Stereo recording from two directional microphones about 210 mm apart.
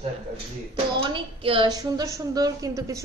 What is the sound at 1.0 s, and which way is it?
A woman's voice, 25° right (ahead or behind).